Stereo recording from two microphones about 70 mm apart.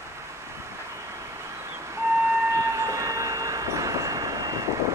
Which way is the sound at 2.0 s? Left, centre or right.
Right.